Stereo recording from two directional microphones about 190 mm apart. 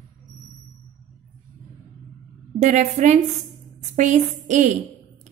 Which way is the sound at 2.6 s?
35° right (ahead or behind).